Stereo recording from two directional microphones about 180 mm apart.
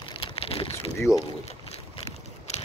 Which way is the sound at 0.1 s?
30° left (ahead or behind).